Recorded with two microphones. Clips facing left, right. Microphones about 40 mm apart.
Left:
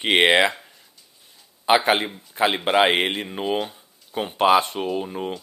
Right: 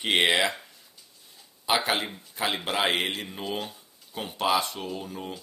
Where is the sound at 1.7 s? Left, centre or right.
Left.